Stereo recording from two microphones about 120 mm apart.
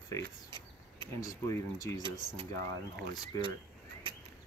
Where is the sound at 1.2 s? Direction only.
25° left (ahead or behind).